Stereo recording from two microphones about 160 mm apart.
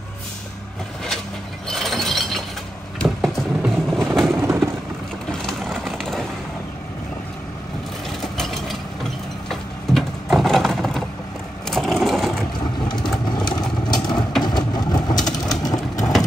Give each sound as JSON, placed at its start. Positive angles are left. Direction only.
{"t": 1.7, "sound": "a sound", "side_deg": 0}
{"t": 3.0, "sound": "vehicle", "side_deg": 0}
{"t": 4.3, "sound": "vehicle", "side_deg": -15}
{"t": 5.3, "sound": "vehicle", "side_deg": 0}
{"t": 8.2, "sound": "vehicle", "side_deg": 0}
{"t": 11.7, "sound": "crushing", "side_deg": 0}
{"t": 12.8, "sound": "vehicle", "side_deg": 25}
{"t": 16.0, "sound": "vehicle", "side_deg": 0}